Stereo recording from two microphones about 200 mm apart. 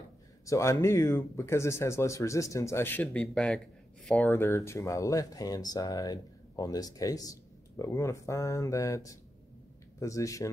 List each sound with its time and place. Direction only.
0.5 s speech: 15° left (ahead or behind)